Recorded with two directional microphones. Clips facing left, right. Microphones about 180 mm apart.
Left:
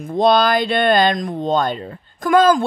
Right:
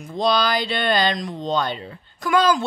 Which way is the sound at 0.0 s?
55° left (ahead or behind).